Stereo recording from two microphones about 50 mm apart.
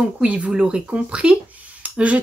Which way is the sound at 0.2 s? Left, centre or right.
Right.